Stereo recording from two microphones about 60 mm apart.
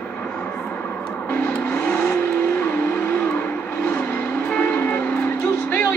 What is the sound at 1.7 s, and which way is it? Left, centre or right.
Vehicle, left.